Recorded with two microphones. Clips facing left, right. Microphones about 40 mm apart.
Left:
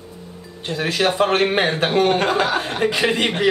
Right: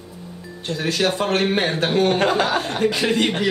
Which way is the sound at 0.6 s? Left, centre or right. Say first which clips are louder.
Left 1 dB; centre.